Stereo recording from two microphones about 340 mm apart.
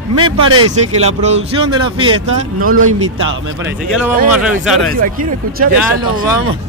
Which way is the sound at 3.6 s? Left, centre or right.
Centre.